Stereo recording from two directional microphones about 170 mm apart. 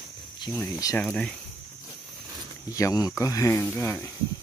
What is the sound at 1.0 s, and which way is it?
Speech, 5° left (ahead or behind).